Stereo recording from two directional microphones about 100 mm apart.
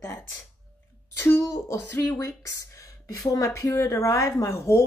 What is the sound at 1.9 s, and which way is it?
A woman's voice, 25° left (ahead or behind).